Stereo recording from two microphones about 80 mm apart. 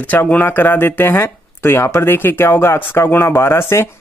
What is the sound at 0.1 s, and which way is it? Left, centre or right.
Speech, centre.